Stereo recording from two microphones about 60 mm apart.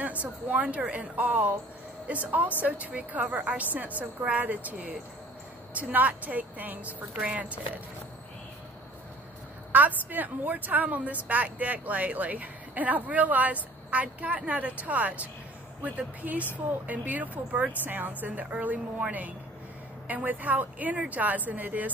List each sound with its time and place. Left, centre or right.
0.2 s a woman's voice: right
9.7 s a woman's voice: right